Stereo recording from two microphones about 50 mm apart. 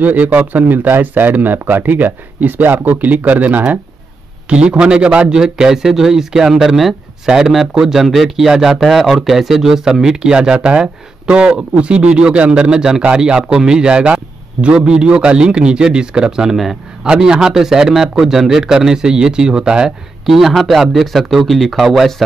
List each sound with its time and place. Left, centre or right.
0.0 s speech: right
4.5 s a man's voice: centre
5.4 s a man's voice: centre
20.2 s speech: centre